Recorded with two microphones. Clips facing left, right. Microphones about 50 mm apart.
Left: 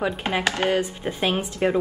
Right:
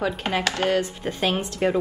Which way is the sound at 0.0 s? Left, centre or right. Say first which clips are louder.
Left 1 dB; centre.